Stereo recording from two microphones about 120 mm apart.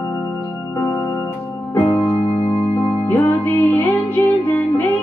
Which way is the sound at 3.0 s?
15° left (ahead or behind).